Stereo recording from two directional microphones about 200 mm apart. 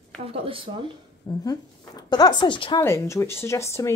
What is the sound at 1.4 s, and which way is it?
Speech, 20° left (ahead or behind).